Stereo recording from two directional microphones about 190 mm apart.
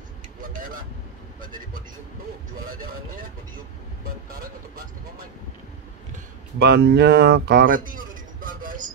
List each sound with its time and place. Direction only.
0.4 s vehicle: 45° right (ahead or behind)
1.4 s speech: 45° right (ahead or behind)
6.6 s speech: 60° right (ahead or behind); by 8.9 s 45° right (ahead or behind)